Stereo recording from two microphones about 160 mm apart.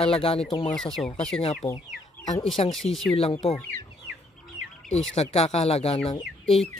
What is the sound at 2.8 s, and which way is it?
Speech, centre (ahead or behind).